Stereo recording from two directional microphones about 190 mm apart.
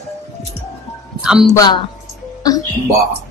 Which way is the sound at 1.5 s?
20° left (ahead or behind).